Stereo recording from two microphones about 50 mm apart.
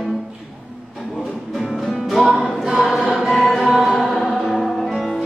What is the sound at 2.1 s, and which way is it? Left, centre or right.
Music, centre.